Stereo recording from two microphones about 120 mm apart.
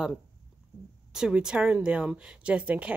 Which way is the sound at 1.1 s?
5° right (ahead or behind).